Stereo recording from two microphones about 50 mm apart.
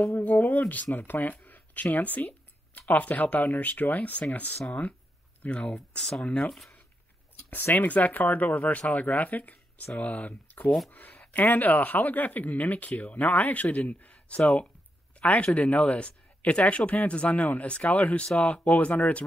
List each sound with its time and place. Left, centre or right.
0.0 s speech: left
5.8 s speech: centre
7.5 s speech: left